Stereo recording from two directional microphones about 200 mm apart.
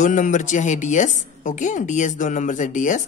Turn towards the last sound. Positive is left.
turn(degrees=40)  # may be behind; listen again after turning